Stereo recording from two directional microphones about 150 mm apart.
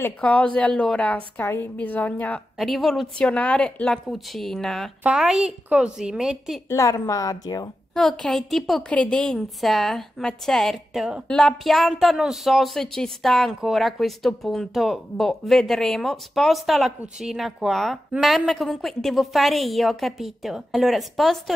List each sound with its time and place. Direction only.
0.0 s a woman's voice: 10° left (ahead or behind)
6.7 s a woman's voice: 20° left (ahead or behind)
7.9 s a woman's voice: 5° left (ahead or behind)